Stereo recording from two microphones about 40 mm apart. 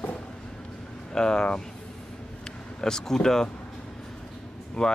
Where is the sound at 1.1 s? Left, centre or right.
Centre.